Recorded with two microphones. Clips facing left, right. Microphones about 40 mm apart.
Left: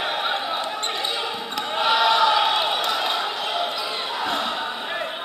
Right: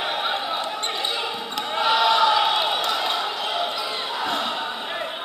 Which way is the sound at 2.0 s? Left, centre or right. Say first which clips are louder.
Even; centre.